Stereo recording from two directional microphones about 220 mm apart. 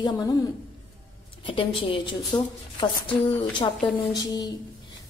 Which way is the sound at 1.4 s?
25° left (ahead or behind).